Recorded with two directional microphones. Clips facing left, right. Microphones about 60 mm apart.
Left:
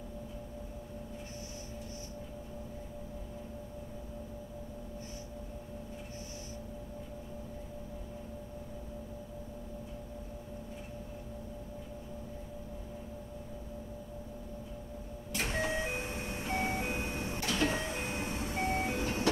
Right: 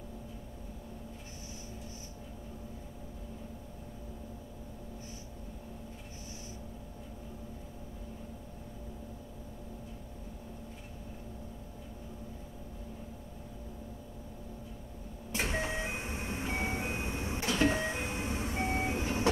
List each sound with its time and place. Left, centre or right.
15.3 s vehicle: centre